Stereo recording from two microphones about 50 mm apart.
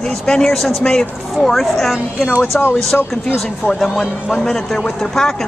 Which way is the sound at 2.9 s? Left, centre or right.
Left.